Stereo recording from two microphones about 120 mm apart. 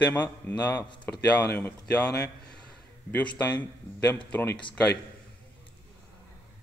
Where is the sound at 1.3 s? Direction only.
15° left (ahead or behind).